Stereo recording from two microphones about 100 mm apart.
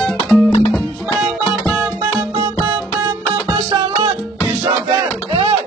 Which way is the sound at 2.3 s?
50° right (ahead or behind).